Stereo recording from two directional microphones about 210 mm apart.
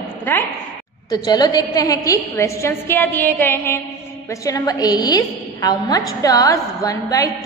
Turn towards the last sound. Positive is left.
turn(degrees=15)  # may be behind; listen again after turning